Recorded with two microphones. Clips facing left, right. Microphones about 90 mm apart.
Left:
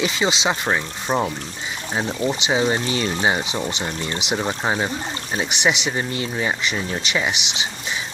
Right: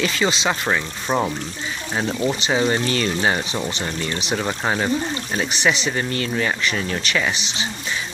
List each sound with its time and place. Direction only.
0.0 s speech: 20° left (ahead or behind)
2.4 s speech: 15° left (ahead or behind)